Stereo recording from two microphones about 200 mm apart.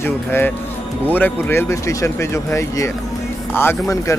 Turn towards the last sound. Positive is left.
turn(degrees=15)  # may be behind; listen again after turning